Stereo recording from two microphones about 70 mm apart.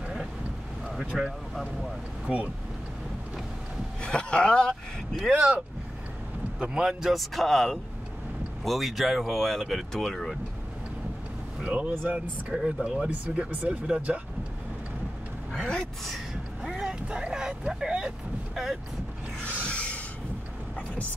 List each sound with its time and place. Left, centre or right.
0.8 s boat: centre
2.2 s speech: centre
4.0 s a man's voice: centre
5.3 s speech: centre
6.6 s speech: centre
11.6 s speech: centre
11.9 s speech: right
12.7 s speech: centre
15.7 s speech: centre
16.6 s vehicle: centre
19.6 s a sound: centre